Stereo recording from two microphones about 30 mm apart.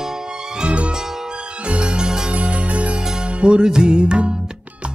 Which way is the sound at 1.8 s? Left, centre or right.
Right.